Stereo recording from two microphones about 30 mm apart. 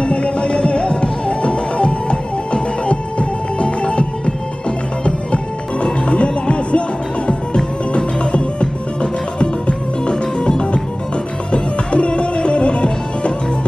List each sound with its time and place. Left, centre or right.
0.0 s music: left